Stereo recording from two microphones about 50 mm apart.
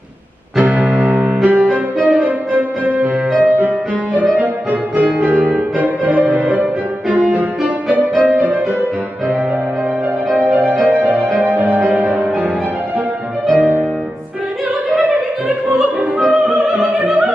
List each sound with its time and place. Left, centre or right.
0.6 s music: right
10.3 s music: right
14.9 s opera: right
16.2 s opera: right